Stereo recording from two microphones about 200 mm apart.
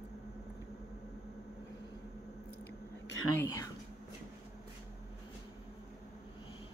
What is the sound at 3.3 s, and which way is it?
Speech, 15° left (ahead or behind).